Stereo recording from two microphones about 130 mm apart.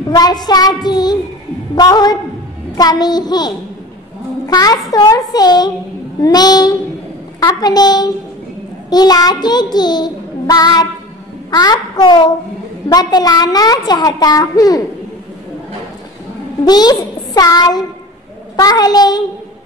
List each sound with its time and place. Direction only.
0.1 s child singing: 30° left (ahead or behind)
4.5 s a child's voice: 30° left (ahead or behind)
4.9 s child singing: 30° left (ahead or behind)
16.6 s child singing: 30° left (ahead or behind)